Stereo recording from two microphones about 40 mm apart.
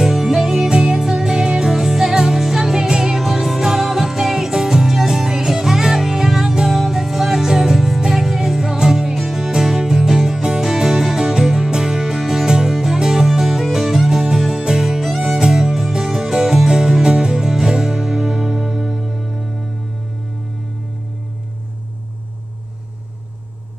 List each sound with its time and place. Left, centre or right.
0.0 s music: centre
3.2 s music: centre
13.3 s music: centre